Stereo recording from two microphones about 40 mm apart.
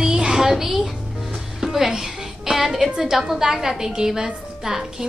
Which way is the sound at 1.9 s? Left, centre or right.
Centre.